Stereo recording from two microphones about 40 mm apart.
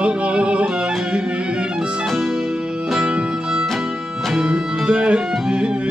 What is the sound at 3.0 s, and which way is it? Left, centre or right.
Music, right.